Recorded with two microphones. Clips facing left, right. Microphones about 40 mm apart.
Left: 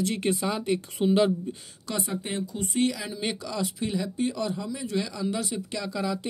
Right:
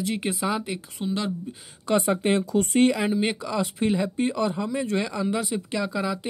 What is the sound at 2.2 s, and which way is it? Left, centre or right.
Speech, right.